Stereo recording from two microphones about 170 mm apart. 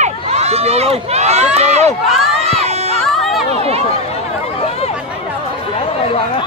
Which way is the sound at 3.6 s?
35° right (ahead or behind).